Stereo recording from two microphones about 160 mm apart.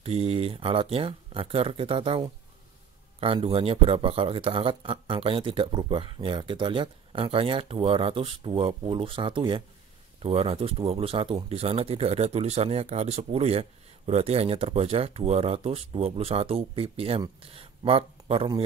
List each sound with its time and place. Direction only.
0.0 s speech: 40° right (ahead or behind)